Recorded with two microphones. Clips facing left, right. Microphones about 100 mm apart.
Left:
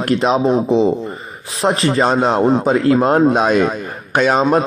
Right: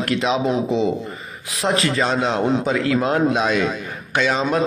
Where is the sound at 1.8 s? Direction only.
35° left (ahead or behind).